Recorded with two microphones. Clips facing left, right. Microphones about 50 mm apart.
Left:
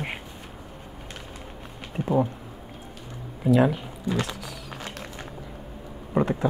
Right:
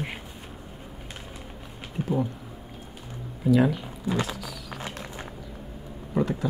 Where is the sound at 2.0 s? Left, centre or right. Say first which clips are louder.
Left 2 dB; centre.